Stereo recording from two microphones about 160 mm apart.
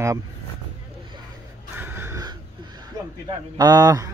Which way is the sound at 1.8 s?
15° right (ahead or behind).